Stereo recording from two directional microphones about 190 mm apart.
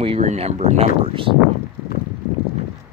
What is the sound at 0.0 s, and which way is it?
Speech, 35° right (ahead or behind).